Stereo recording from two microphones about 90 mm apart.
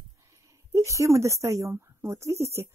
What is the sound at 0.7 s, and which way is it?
Speech, 35° right (ahead or behind).